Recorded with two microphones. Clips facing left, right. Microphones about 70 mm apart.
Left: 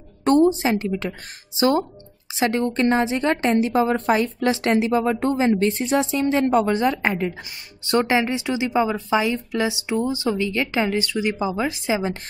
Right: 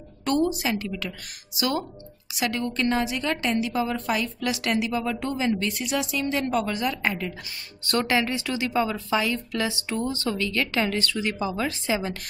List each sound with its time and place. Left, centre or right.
0.2 s a woman's voice: left